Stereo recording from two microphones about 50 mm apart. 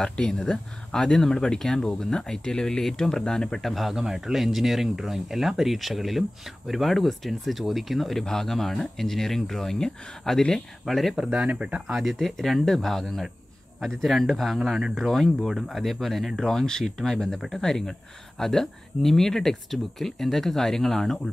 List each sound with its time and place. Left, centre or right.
0.0 s speech: centre
3.6 s speech: centre
11.3 s speech: right
11.9 s speech: centre